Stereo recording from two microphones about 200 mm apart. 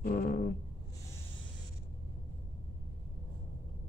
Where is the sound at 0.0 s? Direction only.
45° left (ahead or behind).